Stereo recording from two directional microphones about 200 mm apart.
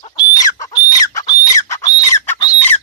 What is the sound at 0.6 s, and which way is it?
Chicken, 20° left (ahead or behind).